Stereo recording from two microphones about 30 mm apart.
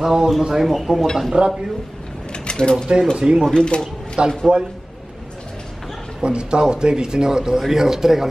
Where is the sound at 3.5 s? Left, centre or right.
Left.